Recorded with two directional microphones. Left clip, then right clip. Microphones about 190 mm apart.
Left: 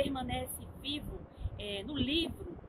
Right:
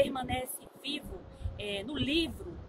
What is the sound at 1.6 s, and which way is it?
Speech, 5° right (ahead or behind).